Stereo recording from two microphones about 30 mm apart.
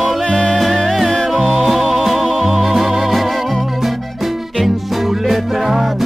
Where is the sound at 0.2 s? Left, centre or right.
Left.